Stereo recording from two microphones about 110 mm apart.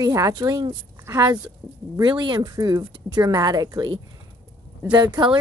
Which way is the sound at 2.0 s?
45° right (ahead or behind).